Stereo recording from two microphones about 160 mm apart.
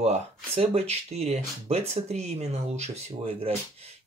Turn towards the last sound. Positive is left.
turn(degrees=-40)  # may be behind; listen again after turning